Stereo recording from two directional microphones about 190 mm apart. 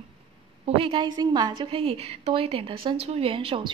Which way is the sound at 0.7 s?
25° right (ahead or behind).